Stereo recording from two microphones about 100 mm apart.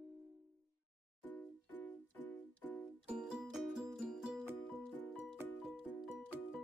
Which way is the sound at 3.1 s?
5° right (ahead or behind).